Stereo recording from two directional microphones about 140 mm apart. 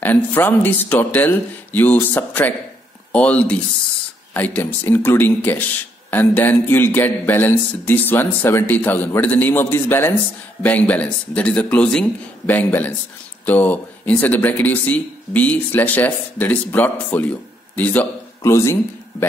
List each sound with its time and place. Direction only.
0.0 s speech: 15° left (ahead or behind)